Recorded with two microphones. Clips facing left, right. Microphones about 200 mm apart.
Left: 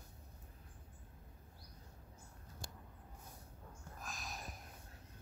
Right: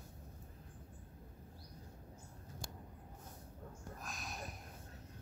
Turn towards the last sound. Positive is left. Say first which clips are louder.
# right 2 dB
turn(degrees=0)  # may be behind; listen again after turning